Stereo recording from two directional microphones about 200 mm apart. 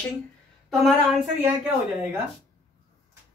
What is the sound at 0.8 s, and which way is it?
Speech, centre (ahead or behind).